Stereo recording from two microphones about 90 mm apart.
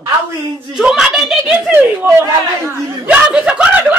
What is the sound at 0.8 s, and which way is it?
Speech, 5° right (ahead or behind).